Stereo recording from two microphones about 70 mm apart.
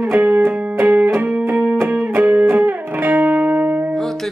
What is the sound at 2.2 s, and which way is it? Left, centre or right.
Music, centre.